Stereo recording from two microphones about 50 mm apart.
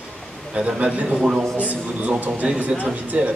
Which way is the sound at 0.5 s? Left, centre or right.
Right.